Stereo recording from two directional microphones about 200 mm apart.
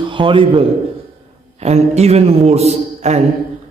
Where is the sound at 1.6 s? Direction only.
30° right (ahead or behind).